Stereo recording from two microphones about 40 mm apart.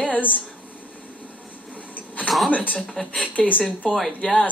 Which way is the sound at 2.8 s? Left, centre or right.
Centre.